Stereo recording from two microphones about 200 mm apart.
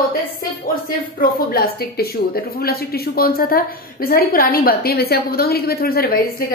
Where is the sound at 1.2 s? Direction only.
50° left (ahead or behind).